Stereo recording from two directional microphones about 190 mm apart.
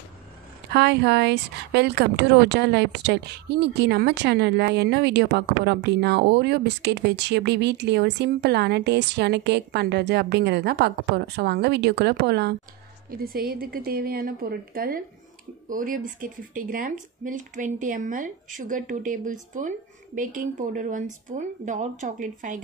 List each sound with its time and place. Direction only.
0.7 s a woman's voice: 60° right (ahead or behind); by 22.6 s 40° right (ahead or behind)